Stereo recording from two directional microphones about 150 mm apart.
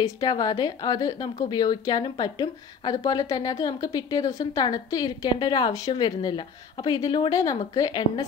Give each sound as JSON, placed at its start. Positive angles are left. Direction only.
{"t": 0.0, "sound": "a woman's voice", "side_deg": 25}